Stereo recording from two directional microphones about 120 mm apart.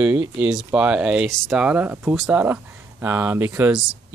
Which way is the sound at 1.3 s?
5° left (ahead or behind).